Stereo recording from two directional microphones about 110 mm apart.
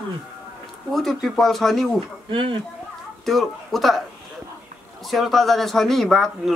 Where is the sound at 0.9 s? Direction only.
Centre (ahead or behind).